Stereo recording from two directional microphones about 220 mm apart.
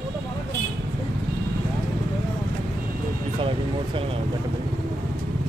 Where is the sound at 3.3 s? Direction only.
25° right (ahead or behind).